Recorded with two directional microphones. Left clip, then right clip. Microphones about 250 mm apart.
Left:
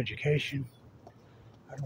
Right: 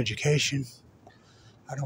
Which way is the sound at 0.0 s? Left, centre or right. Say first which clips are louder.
Right 4 dB; right.